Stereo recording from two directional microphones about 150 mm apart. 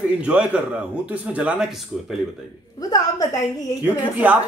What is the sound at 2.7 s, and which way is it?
Speech, 25° left (ahead or behind).